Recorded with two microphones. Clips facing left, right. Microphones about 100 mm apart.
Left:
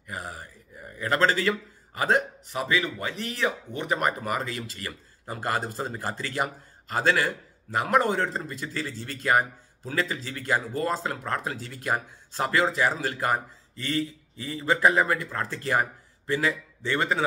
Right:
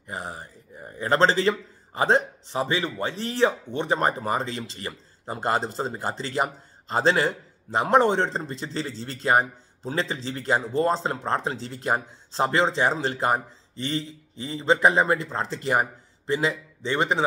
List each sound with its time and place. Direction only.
0.0 s a man's voice: 25° right (ahead or behind)